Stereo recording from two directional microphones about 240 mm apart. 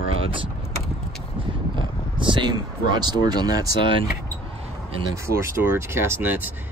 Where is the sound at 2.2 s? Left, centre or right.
Centre.